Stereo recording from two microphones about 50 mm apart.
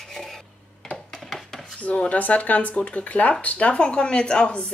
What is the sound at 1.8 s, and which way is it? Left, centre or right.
Speech, left.